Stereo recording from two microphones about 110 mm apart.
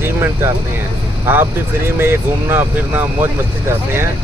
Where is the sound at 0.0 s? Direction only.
20° right (ahead or behind).